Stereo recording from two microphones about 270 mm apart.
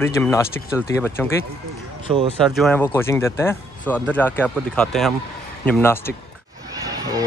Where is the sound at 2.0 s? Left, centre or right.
Centre.